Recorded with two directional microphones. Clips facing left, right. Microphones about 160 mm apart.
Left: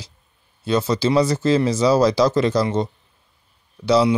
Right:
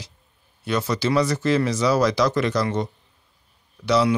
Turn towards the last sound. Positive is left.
turn(degrees=25)  # may be behind; listen again after turning